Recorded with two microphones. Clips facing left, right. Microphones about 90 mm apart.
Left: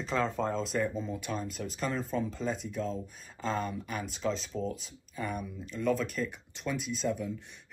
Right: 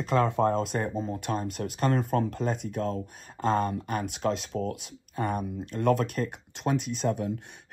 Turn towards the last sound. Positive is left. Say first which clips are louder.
# right 4 dB
turn(degrees=-50)  # may be behind; listen again after turning